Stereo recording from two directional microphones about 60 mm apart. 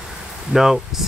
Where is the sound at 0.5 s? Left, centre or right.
Centre.